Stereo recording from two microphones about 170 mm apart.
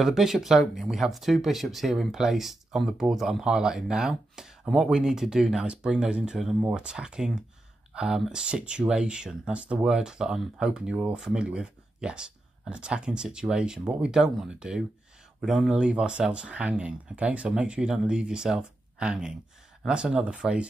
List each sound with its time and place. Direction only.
0.0 s speech: centre (ahead or behind)